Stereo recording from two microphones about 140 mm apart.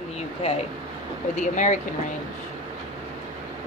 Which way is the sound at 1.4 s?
60° left (ahead or behind).